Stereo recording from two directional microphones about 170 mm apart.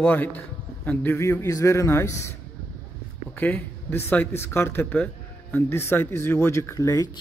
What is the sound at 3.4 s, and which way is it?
Speech, 10° left (ahead or behind).